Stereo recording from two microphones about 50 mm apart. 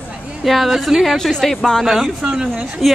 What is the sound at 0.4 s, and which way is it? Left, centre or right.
A woman's voice, centre.